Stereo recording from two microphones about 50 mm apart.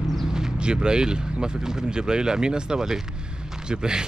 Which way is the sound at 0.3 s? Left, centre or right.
Centre.